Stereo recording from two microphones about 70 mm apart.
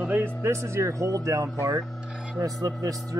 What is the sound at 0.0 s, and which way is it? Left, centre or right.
Music, right.